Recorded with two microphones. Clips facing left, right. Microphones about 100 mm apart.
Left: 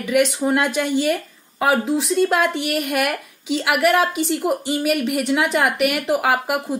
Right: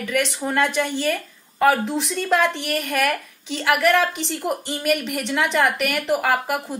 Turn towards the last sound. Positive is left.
turn(degrees=10)  # may be behind; listen again after turning